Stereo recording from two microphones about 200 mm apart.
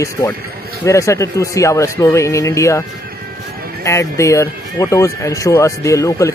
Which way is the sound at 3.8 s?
15° left (ahead or behind).